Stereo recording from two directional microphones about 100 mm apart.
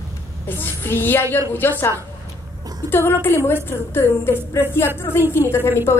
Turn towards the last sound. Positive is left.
turn(degrees=25)  # may be behind; listen again after turning